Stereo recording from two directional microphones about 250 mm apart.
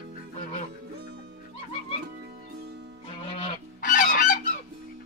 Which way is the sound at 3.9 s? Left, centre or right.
Left.